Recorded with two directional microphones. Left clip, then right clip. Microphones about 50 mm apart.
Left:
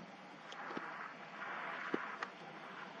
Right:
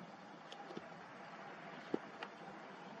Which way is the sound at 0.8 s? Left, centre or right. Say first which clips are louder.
Left 5 dB; left.